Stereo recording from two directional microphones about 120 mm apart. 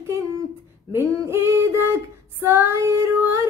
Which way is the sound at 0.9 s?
20° right (ahead or behind).